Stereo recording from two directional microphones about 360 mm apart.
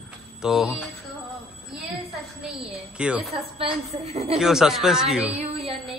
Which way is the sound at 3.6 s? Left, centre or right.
Centre.